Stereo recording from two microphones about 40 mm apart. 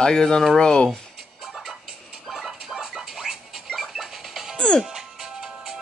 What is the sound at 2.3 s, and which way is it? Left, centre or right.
Music, centre.